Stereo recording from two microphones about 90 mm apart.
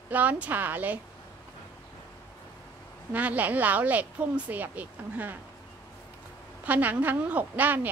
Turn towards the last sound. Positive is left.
turn(degrees=-20)  # may be behind; listen again after turning